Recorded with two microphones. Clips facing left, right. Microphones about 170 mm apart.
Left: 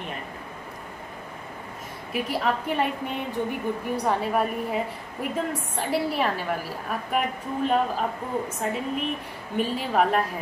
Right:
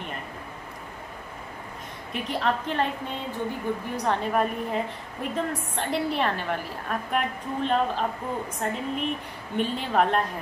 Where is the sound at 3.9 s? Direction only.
5° left (ahead or behind).